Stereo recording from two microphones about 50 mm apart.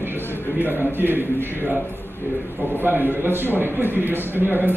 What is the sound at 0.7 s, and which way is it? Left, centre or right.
Speech, right.